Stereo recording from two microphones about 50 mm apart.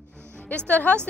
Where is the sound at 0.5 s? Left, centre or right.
Left.